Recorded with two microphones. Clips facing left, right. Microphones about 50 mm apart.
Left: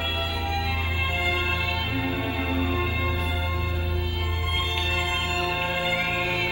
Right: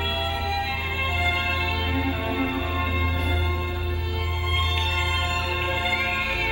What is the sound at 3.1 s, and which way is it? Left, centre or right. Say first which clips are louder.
Music: right 2 dB; right.